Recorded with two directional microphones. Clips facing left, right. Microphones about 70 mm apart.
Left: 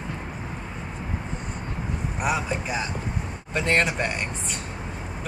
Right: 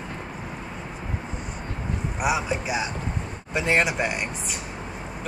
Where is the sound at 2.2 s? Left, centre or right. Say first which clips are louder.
Right 1 dB; centre.